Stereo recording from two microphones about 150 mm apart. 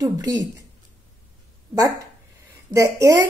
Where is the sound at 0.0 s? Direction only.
25° right (ahead or behind).